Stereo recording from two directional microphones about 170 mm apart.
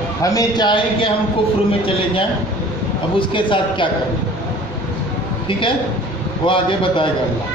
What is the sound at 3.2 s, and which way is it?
Speech, 30° left (ahead or behind).